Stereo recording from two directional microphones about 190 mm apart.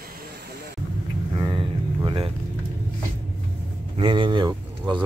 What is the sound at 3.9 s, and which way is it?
Speech, 25° right (ahead or behind).